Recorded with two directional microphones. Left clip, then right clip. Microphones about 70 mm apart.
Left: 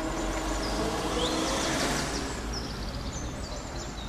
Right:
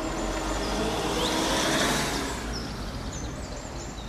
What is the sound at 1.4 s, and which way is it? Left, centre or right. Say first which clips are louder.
Vehicle: right 4 dB; right.